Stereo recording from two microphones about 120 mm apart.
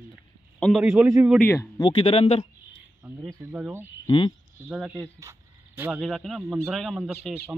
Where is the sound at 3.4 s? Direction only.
15° right (ahead or behind).